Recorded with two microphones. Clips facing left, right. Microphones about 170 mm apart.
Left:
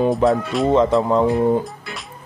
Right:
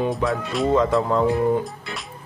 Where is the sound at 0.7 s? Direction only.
20° left (ahead or behind).